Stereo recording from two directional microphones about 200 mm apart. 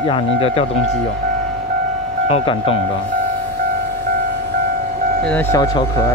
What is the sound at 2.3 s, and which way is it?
Speech, 30° left (ahead or behind).